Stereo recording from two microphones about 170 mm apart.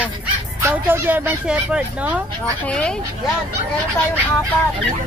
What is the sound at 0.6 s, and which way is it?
Speech, 15° right (ahead or behind).